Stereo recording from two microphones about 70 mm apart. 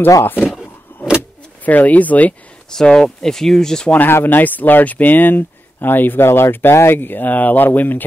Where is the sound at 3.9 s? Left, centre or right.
Left.